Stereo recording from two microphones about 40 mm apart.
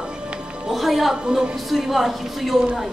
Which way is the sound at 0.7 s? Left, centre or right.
Centre.